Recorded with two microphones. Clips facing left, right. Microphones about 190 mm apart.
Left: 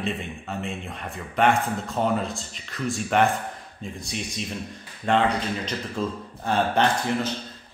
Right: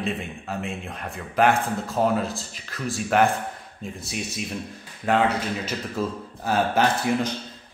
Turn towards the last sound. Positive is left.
turn(degrees=-5)  # may be behind; listen again after turning